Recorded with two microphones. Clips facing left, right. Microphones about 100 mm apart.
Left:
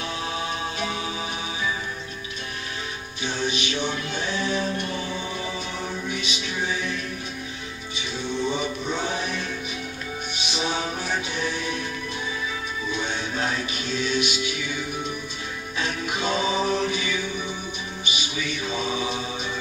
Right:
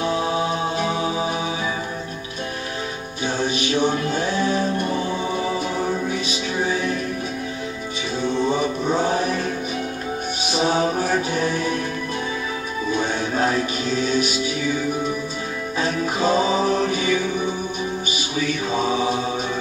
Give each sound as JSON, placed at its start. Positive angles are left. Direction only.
{"t": 0.0, "sound": "music", "side_deg": -35}
{"t": 3.3, "sound": "music", "side_deg": -40}
{"t": 8.2, "sound": "music", "side_deg": -40}
{"t": 10.5, "sound": "music", "side_deg": -40}
{"t": 12.9, "sound": "music", "side_deg": -40}
{"t": 18.7, "sound": "mantra", "side_deg": -40}